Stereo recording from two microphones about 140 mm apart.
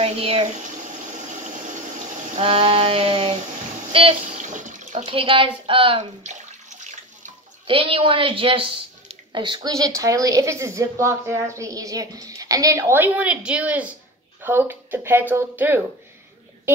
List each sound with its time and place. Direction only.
0.0 s speech: 45° right (ahead or behind)
1.1 s water: 65° right (ahead or behind)
2.3 s speech: 40° right (ahead or behind)
4.3 s water: 60° right (ahead or behind)
4.9 s speech: 40° right (ahead or behind)
6.8 s water: 60° right (ahead or behind)
7.6 s a woman's voice: 40° right (ahead or behind); by 15.8 s 15° right (ahead or behind)